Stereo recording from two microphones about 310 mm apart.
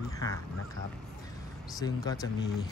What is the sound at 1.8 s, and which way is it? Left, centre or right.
Speech, centre.